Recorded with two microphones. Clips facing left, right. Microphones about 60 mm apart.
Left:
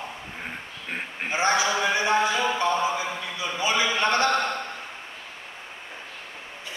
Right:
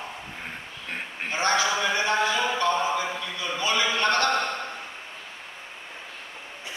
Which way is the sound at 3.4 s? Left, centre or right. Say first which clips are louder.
Left 1 dB; centre.